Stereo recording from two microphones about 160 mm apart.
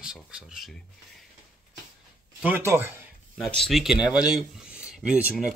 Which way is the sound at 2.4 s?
15° right (ahead or behind).